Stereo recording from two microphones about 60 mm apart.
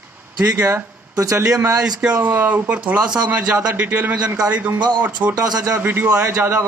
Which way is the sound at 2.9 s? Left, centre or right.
Centre.